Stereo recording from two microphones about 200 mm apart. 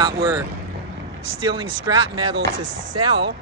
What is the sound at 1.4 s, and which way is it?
Speech, 25° right (ahead or behind).